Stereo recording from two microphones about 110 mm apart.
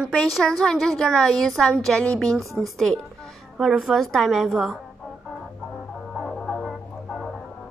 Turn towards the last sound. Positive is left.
turn(degrees=0)  # may be behind; listen again after turning